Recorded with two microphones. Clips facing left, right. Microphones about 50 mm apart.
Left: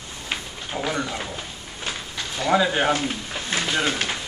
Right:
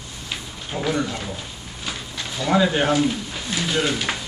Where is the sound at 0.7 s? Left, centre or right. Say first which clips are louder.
Right 3 dB; centre.